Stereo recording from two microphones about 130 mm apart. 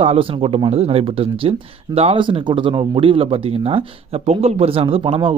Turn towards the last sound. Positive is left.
turn(degrees=-45)  # may be behind; listen again after turning